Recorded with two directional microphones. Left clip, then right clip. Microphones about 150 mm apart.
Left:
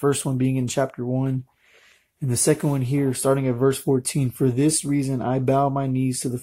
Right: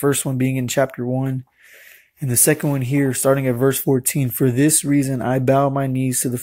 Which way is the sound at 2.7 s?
10° right (ahead or behind).